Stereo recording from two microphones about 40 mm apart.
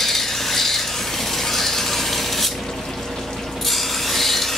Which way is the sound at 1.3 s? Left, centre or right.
Centre.